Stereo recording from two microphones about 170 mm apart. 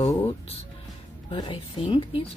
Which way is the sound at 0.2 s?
35° left (ahead or behind).